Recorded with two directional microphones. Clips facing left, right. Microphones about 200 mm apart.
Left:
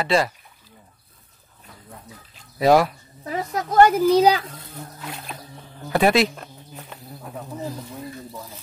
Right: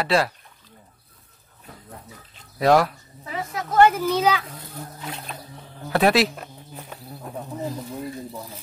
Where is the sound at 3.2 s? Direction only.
40° left (ahead or behind).